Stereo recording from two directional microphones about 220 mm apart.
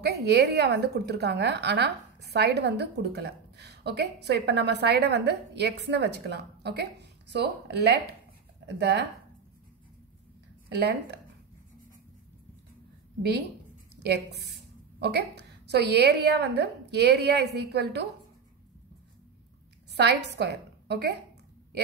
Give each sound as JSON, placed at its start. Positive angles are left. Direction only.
{"t": 0.0, "sound": "a woman's voice", "side_deg": -45}
{"t": 10.7, "sound": "a woman's voice", "side_deg": -50}
{"t": 15.0, "sound": "a woman's voice", "side_deg": -50}
{"t": 19.9, "sound": "a woman's voice", "side_deg": -50}